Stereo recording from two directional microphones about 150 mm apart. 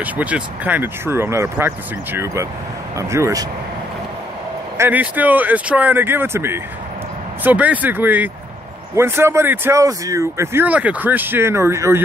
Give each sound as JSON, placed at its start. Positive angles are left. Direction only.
{"t": 0.0, "sound": "speech", "side_deg": -10}
{"t": 3.0, "sound": "speech", "side_deg": -20}
{"t": 4.7, "sound": "speech", "side_deg": -15}